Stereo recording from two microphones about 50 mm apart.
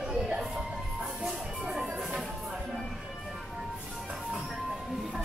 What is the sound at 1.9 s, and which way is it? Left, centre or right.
Music, right.